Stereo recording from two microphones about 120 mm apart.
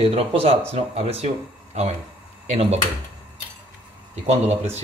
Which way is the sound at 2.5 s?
60° right (ahead or behind).